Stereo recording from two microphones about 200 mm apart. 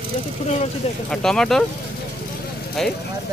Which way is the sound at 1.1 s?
5° left (ahead or behind).